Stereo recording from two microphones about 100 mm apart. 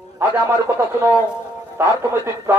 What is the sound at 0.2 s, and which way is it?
Speech, 25° right (ahead or behind).